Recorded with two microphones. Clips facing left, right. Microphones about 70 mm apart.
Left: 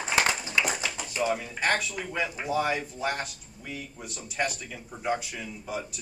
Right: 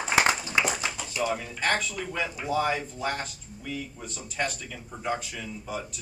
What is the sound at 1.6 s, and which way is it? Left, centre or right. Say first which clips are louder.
Speech: right 1 dB; centre.